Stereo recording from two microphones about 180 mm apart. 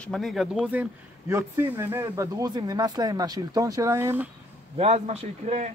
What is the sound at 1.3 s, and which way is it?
Speech, 15° right (ahead or behind).